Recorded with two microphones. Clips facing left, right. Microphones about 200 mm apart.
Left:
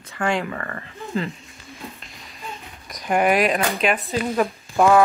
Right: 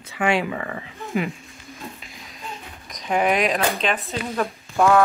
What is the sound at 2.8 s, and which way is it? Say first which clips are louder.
Speech: left 2 dB; 5° left (ahead or behind).